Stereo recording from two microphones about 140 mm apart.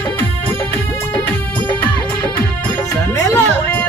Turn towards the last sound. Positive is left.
turn(degrees=15)  # may be behind; listen again after turning